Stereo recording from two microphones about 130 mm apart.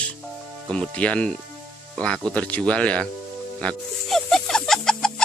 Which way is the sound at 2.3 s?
10° left (ahead or behind).